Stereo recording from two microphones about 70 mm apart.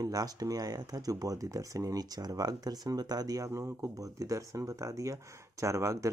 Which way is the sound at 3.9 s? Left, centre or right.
Right.